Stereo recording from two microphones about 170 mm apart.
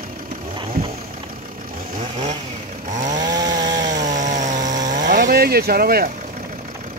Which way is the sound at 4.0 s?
45° right (ahead or behind).